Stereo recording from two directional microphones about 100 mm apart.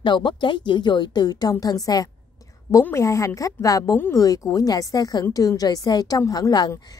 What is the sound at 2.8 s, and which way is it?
A woman's voice, 30° left (ahead or behind).